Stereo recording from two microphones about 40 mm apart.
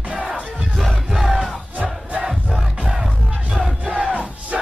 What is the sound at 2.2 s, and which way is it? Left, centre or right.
Music, centre.